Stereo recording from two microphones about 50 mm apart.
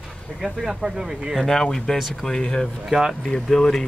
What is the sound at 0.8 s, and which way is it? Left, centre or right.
Speech, centre.